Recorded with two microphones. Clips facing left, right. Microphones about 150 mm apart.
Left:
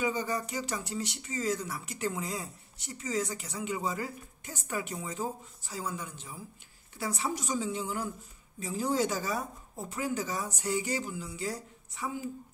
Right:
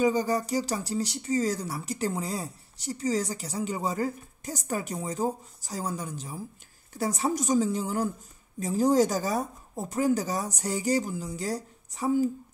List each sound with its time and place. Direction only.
0.0 s speech: 35° right (ahead or behind)